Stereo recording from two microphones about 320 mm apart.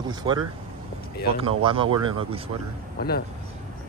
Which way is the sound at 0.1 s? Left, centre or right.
Centre.